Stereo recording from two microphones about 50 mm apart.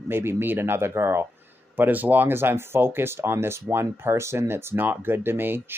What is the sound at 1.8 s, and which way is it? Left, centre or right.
Speech, right.